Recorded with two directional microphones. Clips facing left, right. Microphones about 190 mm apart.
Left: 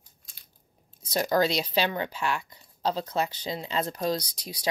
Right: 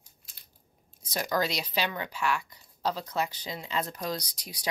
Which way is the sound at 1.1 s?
30° left (ahead or behind).